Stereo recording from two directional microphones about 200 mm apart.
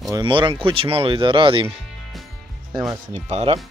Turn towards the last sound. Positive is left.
turn(degrees=-30)  # may be behind; listen again after turning